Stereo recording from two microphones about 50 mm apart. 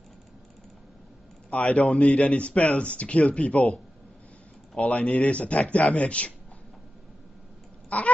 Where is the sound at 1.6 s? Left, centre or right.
Centre.